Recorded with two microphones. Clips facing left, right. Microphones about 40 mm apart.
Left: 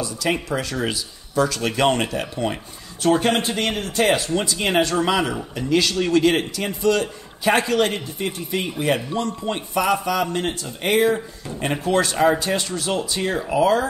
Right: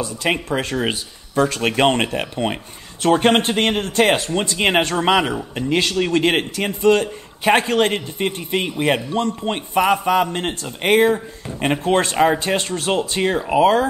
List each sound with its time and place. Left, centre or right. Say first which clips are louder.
0.0 s a man's voice: right 2 dB; right